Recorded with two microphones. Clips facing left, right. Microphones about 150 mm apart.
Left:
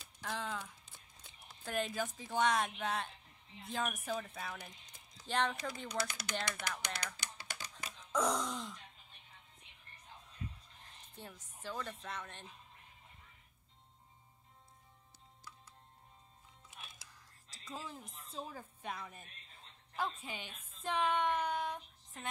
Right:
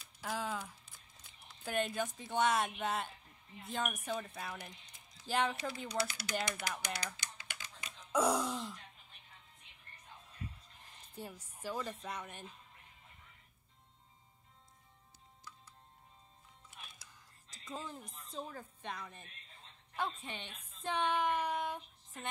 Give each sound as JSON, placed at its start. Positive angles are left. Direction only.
{"t": 0.2, "sound": "a sound", "side_deg": -5}
{"t": 1.6, "sound": "a woman's voice", "side_deg": 0}
{"t": 7.3, "sound": "computer keyboard", "side_deg": 35}
{"t": 8.1, "sound": "speech", "side_deg": -10}
{"t": 11.1, "sound": "speech", "side_deg": -10}
{"t": 17.1, "sound": "a woman's voice", "side_deg": 0}